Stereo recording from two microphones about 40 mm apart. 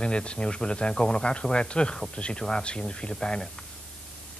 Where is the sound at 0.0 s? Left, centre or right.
Left.